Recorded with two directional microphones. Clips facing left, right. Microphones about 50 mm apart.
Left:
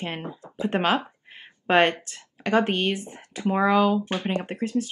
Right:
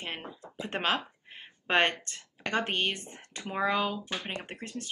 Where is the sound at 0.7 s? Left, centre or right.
Centre.